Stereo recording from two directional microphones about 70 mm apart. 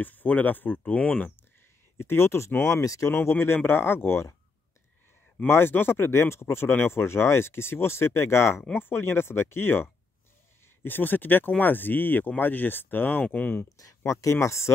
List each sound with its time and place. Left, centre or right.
0.0 s speech: left
2.0 s speech: left
3.1 s speech: left
5.5 s speech: left
13.7 s speech: left